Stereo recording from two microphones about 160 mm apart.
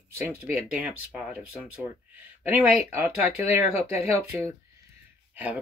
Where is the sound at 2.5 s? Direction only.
15° right (ahead or behind).